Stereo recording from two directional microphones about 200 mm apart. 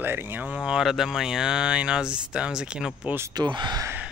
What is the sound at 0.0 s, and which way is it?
Speech, 10° right (ahead or behind).